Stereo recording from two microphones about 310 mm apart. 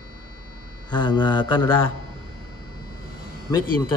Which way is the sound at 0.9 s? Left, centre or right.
Centre.